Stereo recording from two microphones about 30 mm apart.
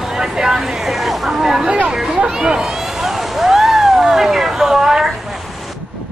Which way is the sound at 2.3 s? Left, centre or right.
Right.